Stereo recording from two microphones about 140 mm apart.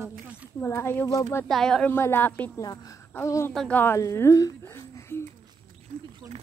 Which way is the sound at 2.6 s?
25° left (ahead or behind).